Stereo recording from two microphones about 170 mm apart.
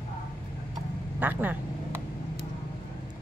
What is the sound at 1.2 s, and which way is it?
Speech, 10° right (ahead or behind).